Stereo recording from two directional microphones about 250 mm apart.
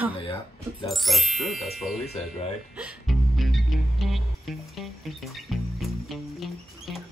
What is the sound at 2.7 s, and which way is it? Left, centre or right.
Music, centre.